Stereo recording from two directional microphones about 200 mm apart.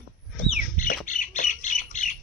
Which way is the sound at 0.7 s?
40° left (ahead or behind).